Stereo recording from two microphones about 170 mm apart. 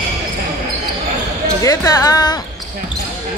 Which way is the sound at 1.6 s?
20° left (ahead or behind).